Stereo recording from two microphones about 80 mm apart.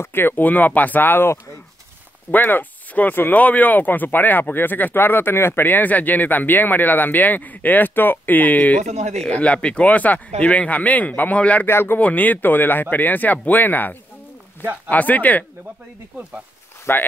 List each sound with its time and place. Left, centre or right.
0.0 s speech: left
11.6 s speech: left
16.9 s speech: left